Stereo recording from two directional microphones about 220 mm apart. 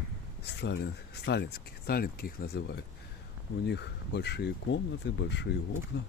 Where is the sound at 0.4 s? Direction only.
50° left (ahead or behind).